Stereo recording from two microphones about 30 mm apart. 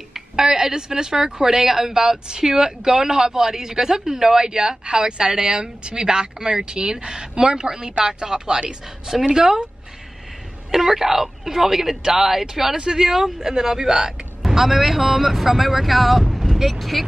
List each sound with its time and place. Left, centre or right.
0.1 s a woman's voice: centre
10.7 s a woman's voice: centre
12.7 s a woman's voice: right; by 17.0 s centre